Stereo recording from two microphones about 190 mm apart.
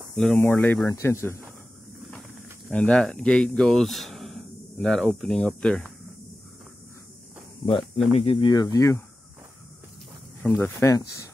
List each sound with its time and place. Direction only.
0.1 s speech: centre (ahead or behind)
2.7 s speech: centre (ahead or behind)
7.6 s speech: 25° left (ahead or behind)
10.4 s speech: centre (ahead or behind)
10.8 s speech: 15° left (ahead or behind)